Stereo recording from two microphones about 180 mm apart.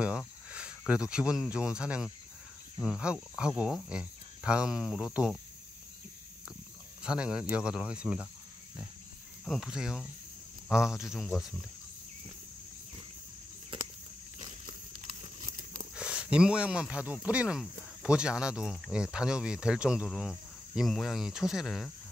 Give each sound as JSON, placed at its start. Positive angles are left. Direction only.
{"t": 0.5, "sound": "speech", "side_deg": -5}
{"t": 7.0, "sound": "speech", "side_deg": -5}
{"t": 9.4, "sound": "speech", "side_deg": 0}
{"t": 15.4, "sound": "a sound", "side_deg": -45}
{"t": 15.9, "sound": "speech", "side_deg": -5}